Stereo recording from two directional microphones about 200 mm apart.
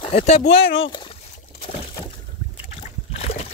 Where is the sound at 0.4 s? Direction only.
55° left (ahead or behind).